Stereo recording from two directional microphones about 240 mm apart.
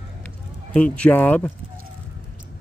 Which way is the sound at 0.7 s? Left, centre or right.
Centre.